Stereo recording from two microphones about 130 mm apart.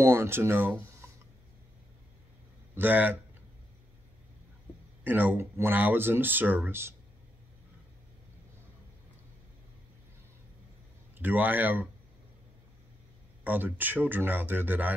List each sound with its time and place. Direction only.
0.0 s speech: 20° right (ahead or behind)
2.7 s speech: 15° right (ahead or behind)
5.0 s speech: 15° right (ahead or behind)
11.1 s speech: 15° right (ahead or behind)
13.4 s speech: 15° right (ahead or behind)